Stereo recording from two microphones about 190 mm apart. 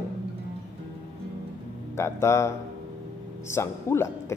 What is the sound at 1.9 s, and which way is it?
A man's voice, 15° left (ahead or behind).